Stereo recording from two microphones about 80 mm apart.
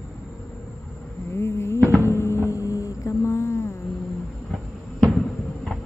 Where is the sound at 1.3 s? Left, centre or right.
Left.